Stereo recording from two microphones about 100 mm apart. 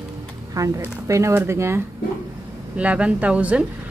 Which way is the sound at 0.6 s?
30° right (ahead or behind).